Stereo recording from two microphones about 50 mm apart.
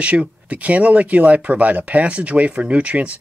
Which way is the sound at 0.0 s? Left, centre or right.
Right.